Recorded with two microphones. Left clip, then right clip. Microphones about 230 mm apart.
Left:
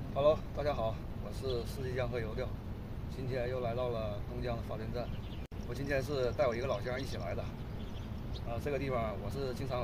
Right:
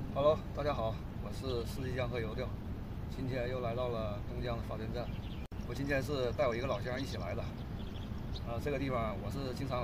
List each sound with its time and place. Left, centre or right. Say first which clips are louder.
0.1 s speech: left 1 dB; centre
8.6 s speech: left 1 dB; centre